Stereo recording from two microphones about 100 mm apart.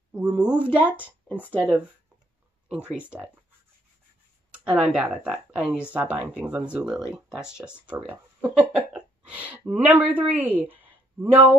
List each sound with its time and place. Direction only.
0.1 s speech: 10° right (ahead or behind)
4.9 s a woman's voice: 10° right (ahead or behind)